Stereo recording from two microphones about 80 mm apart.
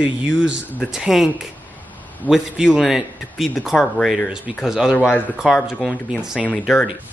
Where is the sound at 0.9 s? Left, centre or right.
Centre.